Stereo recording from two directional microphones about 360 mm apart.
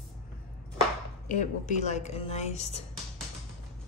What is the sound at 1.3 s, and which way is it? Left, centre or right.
Speech, centre.